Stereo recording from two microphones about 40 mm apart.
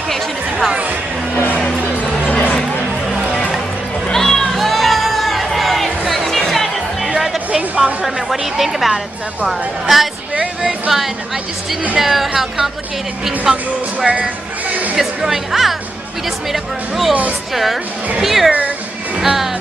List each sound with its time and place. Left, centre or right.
0.1 s a sound: centre
2.2 s music: left
3.1 s music: centre
7.2 s music: centre
8.0 s a woman's voice: centre
10.6 s music: centre
12.0 s speech: centre
13.9 s a sound: right
15.0 s speech: centre
18.2 s speech: centre
19.1 s music: centre